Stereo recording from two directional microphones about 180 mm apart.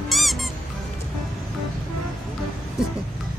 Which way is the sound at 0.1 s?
Centre (ahead or behind).